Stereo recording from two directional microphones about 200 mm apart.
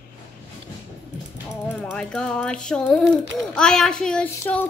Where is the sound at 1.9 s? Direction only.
5° left (ahead or behind).